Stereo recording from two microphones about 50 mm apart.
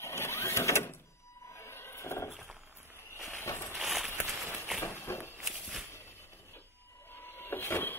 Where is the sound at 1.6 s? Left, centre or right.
Left.